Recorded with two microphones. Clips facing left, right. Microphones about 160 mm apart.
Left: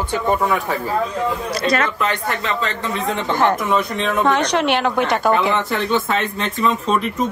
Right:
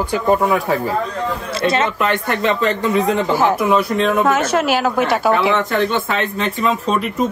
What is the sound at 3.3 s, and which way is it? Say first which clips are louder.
Speech: even; 5° right (ahead or behind).